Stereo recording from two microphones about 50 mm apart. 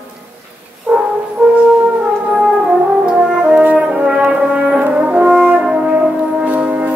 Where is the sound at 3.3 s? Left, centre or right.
Right.